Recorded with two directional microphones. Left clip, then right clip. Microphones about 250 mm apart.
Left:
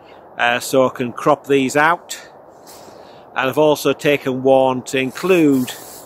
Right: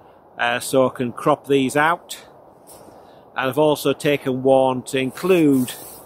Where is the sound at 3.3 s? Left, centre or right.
Centre.